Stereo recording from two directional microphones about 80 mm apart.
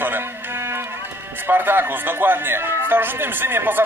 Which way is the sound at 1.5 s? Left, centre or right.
Right.